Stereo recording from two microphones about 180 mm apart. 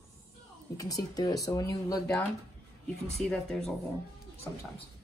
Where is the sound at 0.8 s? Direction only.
20° left (ahead or behind).